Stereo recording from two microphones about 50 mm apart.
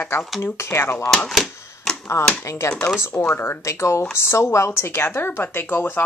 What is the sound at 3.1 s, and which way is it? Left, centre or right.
Speech, centre.